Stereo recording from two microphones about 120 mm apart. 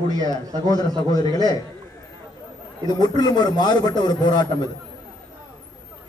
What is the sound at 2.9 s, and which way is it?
A man's voice, 35° left (ahead or behind).